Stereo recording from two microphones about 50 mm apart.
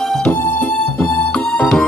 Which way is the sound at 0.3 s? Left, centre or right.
Left.